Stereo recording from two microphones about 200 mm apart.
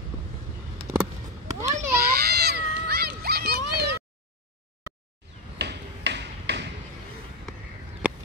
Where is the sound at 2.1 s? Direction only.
55° right (ahead or behind).